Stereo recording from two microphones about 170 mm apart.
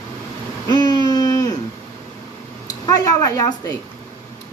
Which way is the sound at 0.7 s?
25° left (ahead or behind).